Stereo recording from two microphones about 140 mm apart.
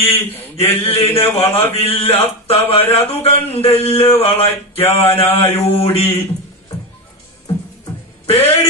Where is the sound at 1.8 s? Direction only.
45° left (ahead or behind).